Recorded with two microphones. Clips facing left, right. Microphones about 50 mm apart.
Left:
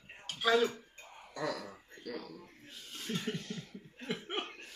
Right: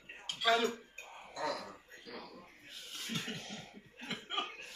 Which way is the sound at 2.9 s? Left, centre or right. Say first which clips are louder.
Left 4 dB; centre.